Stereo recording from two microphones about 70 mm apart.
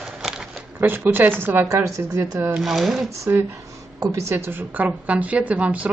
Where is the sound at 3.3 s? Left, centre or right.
Right.